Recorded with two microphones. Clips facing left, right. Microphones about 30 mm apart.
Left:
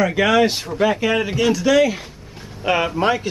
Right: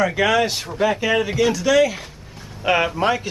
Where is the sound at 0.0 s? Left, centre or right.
Centre.